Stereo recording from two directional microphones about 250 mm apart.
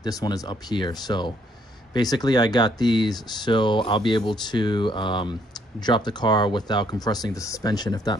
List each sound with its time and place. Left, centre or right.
0.0 s speech: centre